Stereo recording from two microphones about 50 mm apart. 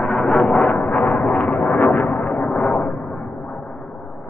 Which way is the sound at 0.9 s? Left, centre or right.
Left.